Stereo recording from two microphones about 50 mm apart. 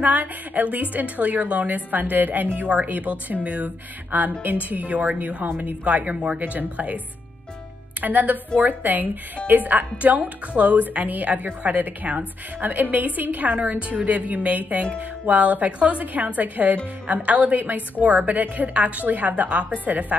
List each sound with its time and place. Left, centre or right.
0.0 s a woman's voice: right
6.4 s speech: right
8.0 s a woman's voice: right